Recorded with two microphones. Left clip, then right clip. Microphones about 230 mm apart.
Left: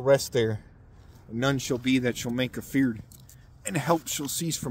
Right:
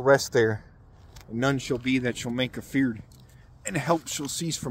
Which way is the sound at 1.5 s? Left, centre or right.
Centre.